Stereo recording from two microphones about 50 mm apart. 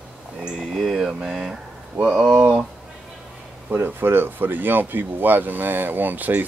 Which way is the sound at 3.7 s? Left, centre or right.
Right.